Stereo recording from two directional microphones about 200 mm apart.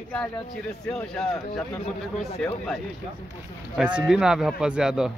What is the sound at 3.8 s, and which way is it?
Speech, 5° right (ahead or behind).